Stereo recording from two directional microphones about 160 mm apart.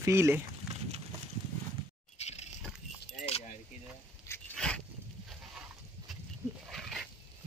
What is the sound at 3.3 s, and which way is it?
Keys jangling, 40° left (ahead or behind).